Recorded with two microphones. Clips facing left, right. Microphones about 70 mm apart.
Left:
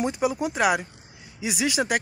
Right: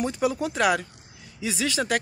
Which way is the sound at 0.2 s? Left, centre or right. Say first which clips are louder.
Right 1 dB; centre.